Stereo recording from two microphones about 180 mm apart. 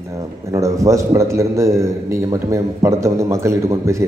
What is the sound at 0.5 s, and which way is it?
A man's voice, 15° right (ahead or behind).